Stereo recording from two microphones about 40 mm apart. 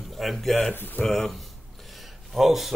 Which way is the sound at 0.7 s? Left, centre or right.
Left.